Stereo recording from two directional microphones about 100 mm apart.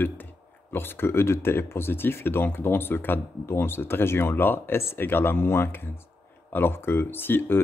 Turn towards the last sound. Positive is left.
turn(degrees=20)  # may be behind; listen again after turning